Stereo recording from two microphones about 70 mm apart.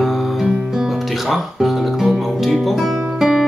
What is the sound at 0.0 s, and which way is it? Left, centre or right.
Guitar, centre.